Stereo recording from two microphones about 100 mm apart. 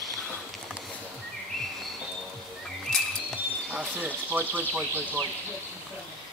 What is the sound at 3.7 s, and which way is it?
Speech, 15° right (ahead or behind).